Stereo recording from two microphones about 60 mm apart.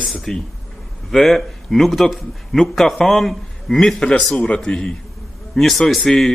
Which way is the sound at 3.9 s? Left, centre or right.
Centre.